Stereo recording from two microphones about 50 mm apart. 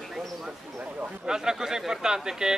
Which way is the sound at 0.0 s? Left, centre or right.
Centre.